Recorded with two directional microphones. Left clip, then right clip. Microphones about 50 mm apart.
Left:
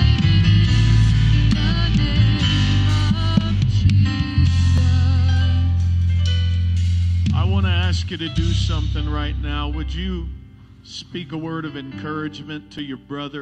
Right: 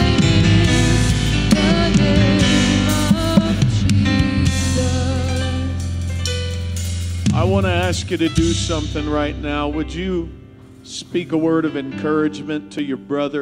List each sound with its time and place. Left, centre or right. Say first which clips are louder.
0.0 s music: right 6 dB; right
7.3 s a man's voice: right 8 dB; right
11.2 s a man's voice: right 13 dB; right